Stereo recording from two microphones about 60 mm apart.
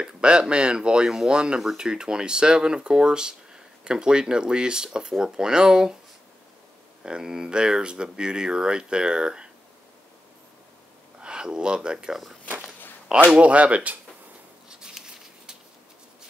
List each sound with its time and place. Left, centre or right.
0.0 s speech: centre
7.0 s speech: centre
11.1 s speech: centre
14.7 s patter: centre